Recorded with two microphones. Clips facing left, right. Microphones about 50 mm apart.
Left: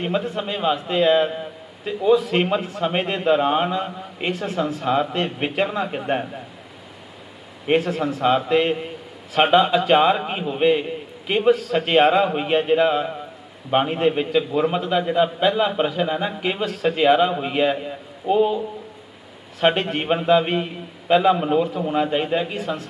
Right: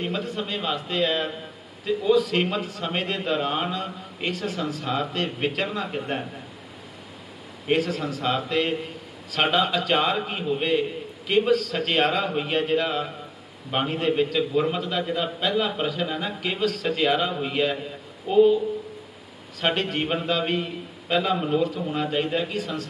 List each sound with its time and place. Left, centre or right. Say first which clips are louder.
0.0 s a man's voice: left 5 dB; centre
7.6 s a man's voice: left 4 dB; left
19.6 s a man's voice: left 5 dB; left